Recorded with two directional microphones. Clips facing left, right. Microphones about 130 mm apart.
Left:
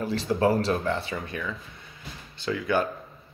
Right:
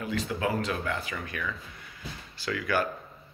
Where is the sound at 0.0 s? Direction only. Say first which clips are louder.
Left 6 dB; 35° left (ahead or behind).